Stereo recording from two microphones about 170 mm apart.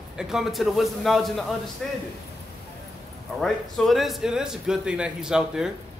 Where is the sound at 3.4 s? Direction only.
Centre (ahead or behind).